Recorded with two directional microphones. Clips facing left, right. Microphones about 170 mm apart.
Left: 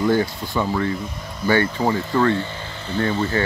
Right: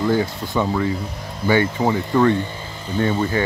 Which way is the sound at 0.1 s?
15° right (ahead or behind).